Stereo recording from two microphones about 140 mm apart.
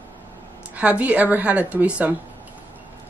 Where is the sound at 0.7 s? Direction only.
10° right (ahead or behind).